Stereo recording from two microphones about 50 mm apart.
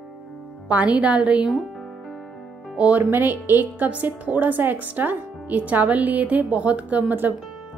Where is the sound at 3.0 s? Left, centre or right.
Right.